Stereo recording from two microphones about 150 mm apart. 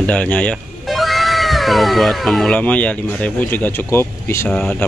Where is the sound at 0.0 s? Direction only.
10° left (ahead or behind).